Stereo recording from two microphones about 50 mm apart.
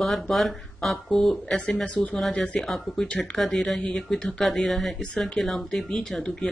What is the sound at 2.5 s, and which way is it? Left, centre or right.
Speech, centre.